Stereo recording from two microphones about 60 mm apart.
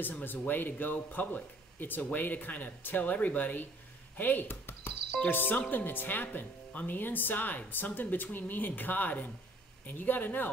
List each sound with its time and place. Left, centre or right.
0.2 s speech: left